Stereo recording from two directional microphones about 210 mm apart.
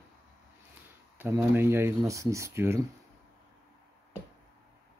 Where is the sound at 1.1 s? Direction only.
10° right (ahead or behind).